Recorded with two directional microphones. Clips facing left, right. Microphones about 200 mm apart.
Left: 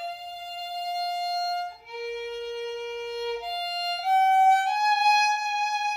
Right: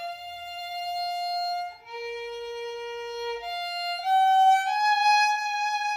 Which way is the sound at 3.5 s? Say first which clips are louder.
Left 1 dB; 30° left (ahead or behind).